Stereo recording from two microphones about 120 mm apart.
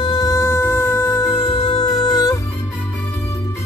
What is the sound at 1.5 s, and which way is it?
Music, 35° left (ahead or behind).